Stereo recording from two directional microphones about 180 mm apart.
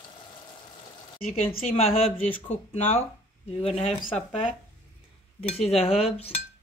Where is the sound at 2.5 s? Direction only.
40° left (ahead or behind).